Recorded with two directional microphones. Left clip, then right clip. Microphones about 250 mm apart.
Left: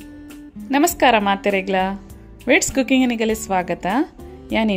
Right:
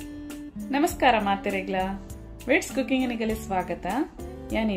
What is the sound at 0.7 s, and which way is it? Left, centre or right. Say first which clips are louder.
Speech: left 6 dB; left.